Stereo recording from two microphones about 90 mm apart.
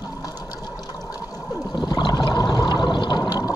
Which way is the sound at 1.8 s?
55° left (ahead or behind).